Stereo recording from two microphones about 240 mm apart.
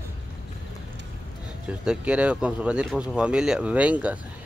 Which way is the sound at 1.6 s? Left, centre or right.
Centre.